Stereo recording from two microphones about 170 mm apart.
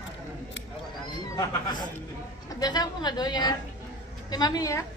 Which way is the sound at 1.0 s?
20° left (ahead or behind).